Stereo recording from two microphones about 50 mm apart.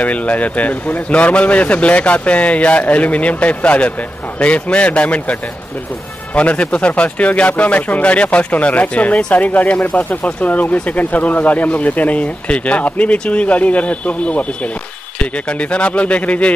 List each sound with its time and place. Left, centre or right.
0.0 s speech: left